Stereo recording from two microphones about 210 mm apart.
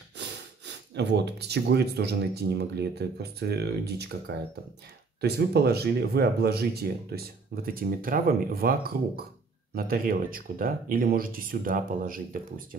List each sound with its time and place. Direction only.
0.2 s speech: 55° right (ahead or behind)
5.2 s speech: 50° right (ahead or behind)